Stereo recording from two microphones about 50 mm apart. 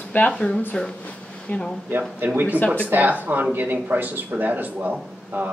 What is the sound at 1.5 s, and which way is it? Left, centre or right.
Speech, left.